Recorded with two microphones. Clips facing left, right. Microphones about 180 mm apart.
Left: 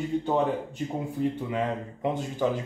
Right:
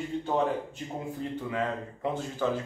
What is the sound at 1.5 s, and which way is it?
Speech, 15° left (ahead or behind).